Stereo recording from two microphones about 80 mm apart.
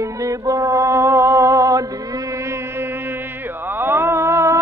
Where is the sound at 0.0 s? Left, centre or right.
Right.